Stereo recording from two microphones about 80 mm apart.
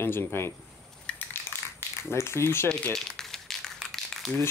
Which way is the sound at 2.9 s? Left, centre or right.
Centre.